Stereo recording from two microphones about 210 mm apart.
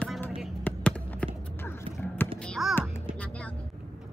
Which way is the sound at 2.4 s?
Centre (ahead or behind).